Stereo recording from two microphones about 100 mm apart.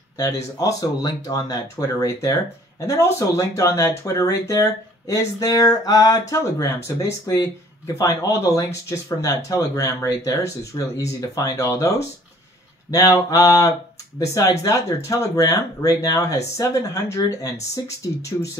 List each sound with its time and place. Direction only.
0.6 s speech: 40° left (ahead or behind)
2.9 s speech: 35° left (ahead or behind)
12.9 s speech: 35° left (ahead or behind)